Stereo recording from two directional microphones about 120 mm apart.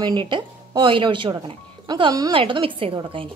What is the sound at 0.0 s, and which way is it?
Speech, 40° right (ahead or behind).